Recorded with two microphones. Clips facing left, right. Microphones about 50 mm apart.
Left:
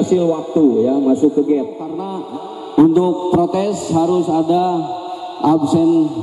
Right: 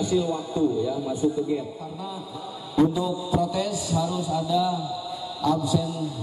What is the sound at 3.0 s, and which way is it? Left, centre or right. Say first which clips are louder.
A man's voice: left 11 dB; left.